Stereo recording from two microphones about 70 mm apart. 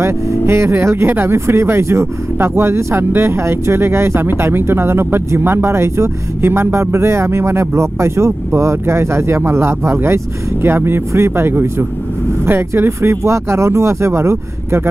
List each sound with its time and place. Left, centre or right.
0.0 s speech: right